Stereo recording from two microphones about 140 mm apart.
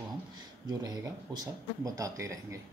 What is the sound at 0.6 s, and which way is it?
Speech, 30° right (ahead or behind).